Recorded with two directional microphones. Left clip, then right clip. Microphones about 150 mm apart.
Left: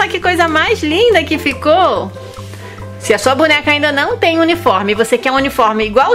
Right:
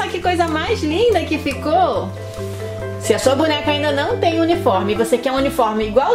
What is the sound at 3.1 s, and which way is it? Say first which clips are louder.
A woman's voice: left 5 dB; 30° left (ahead or behind).